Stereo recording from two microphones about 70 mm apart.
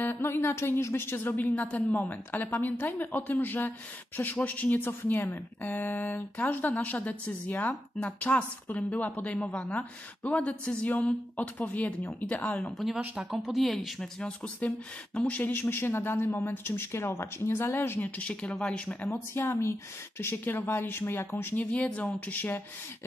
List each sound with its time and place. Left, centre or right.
0.0 s a woman's voice: left
12.7 s speech: centre
14.2 s a woman's voice: centre
18.2 s speech: centre
19.0 s a woman's voice: left